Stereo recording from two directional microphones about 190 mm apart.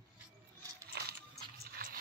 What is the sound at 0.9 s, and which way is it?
Music, 60° right (ahead or behind).